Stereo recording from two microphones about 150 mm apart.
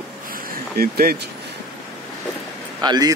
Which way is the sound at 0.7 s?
90° right.